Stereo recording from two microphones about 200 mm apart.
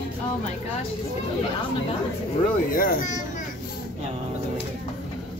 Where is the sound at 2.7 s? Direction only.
45° left (ahead or behind).